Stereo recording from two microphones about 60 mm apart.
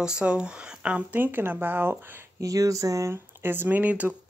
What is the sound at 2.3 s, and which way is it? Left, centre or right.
Speech, right.